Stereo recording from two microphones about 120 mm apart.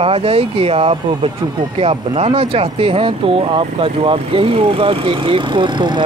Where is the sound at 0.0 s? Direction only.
55° right (ahead or behind).